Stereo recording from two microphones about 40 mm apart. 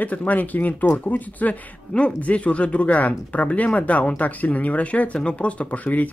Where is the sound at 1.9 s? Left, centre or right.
Left.